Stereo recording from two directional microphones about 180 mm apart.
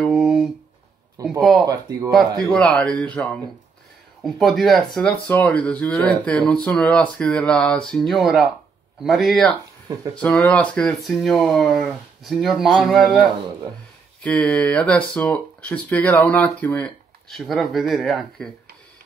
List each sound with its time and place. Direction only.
0.0 s a sound: centre (ahead or behind)
1.2 s speech: 20° right (ahead or behind)
2.5 s speech: 5° left (ahead or behind)
4.2 s speech: centre (ahead or behind)
14.2 s speech: 5° left (ahead or behind)